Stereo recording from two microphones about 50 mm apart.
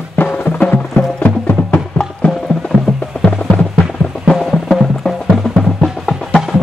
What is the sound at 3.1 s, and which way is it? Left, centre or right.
Music, left.